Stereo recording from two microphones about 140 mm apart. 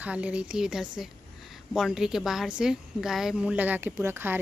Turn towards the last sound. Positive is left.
turn(degrees=-15)  # may be behind; listen again after turning